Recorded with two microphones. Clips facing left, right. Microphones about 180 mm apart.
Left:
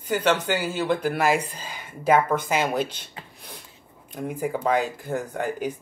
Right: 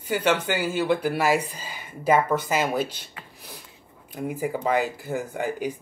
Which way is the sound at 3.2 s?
30° left (ahead or behind).